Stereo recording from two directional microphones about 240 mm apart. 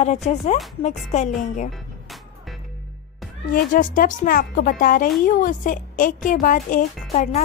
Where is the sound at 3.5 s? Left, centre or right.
Left.